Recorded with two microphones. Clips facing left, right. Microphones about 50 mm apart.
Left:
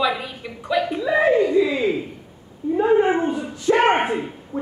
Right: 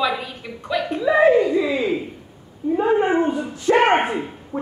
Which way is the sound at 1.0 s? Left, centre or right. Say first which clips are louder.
Right 4 dB; centre.